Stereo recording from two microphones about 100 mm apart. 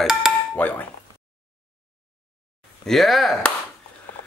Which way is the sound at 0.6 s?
15° left (ahead or behind).